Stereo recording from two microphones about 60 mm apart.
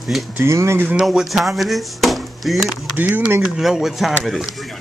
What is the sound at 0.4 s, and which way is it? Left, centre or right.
Speech, right.